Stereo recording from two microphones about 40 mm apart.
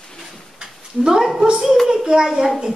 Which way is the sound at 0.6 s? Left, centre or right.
Centre.